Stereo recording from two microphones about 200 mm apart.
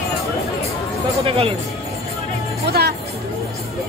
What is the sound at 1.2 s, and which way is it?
Speech, 30° right (ahead or behind).